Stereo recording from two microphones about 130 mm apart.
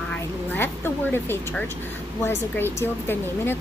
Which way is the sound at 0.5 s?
15° left (ahead or behind).